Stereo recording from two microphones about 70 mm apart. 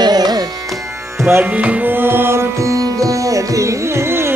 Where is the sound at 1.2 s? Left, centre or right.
Right.